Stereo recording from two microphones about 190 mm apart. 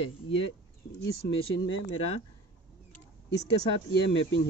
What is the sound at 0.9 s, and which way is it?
Speech, 60° left (ahead or behind).